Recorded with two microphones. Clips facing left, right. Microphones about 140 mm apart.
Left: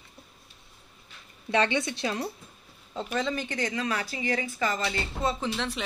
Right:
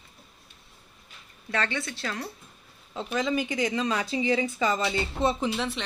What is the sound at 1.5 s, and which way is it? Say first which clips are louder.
Speech: left 5 dB; 20° left (ahead or behind).